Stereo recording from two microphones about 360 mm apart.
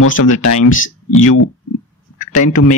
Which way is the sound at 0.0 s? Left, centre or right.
Left.